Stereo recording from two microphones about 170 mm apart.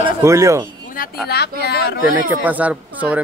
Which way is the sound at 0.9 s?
55° left (ahead or behind).